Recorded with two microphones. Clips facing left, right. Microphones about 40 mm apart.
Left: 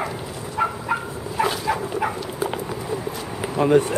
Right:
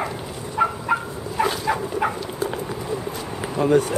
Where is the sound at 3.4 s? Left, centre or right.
Centre.